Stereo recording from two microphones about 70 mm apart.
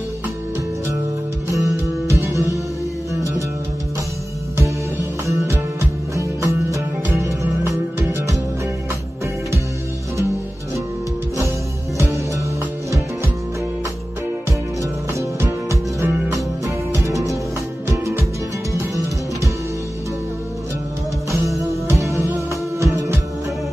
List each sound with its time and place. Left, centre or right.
1.5 s music: right
5.5 s music: right
16.0 s music: right
21.3 s music: right